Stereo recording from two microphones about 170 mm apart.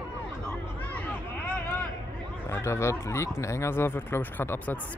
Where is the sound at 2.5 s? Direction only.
15° left (ahead or behind).